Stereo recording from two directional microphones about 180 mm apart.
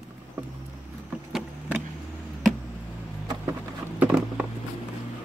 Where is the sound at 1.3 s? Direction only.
5° right (ahead or behind).